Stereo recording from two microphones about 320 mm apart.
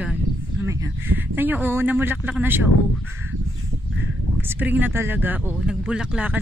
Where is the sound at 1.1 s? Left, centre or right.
Centre.